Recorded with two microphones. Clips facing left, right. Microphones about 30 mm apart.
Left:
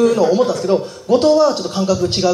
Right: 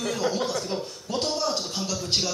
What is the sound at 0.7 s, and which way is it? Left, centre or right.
Speech, left.